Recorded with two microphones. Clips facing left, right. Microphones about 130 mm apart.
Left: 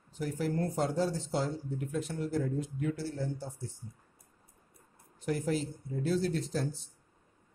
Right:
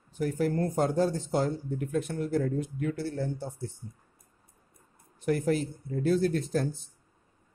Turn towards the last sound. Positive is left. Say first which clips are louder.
# right 5 dB
turn(degrees=-55)  # may be behind; listen again after turning